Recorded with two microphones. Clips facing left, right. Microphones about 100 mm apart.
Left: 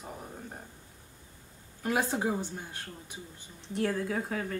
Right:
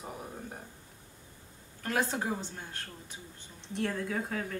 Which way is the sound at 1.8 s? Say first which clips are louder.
Left 2 dB; 10° left (ahead or behind).